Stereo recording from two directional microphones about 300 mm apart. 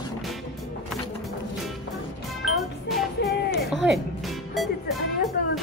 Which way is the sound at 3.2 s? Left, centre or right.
Left.